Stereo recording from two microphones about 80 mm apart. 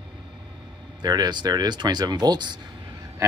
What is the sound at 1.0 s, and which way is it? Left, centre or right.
Speech, right.